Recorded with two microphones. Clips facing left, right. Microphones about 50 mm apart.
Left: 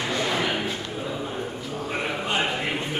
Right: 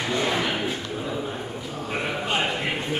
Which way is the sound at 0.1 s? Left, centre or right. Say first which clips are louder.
Right 2 dB; centre.